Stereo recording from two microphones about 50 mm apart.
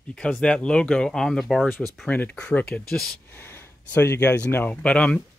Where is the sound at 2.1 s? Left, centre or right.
Left.